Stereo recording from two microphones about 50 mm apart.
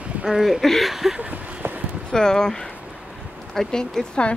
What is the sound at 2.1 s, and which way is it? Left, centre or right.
Speech, centre.